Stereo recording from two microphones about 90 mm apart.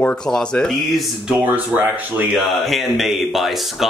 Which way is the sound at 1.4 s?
20° right (ahead or behind).